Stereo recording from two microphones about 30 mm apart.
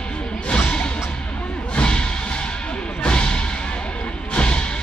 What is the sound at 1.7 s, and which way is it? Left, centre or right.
Music, left.